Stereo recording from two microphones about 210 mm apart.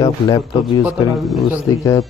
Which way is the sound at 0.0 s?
20° left (ahead or behind).